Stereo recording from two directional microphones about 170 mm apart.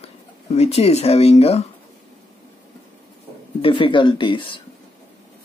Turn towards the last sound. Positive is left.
turn(degrees=30)  # may be behind; listen again after turning